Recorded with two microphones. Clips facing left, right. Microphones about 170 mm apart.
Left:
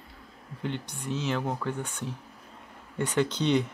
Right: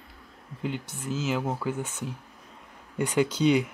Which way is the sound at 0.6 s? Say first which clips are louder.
Right 1 dB; 5° right (ahead or behind).